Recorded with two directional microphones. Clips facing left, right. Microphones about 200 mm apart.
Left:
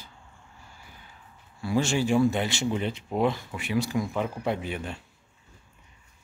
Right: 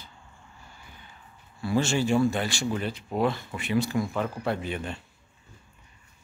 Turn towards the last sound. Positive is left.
turn(degrees=10)  # may be behind; listen again after turning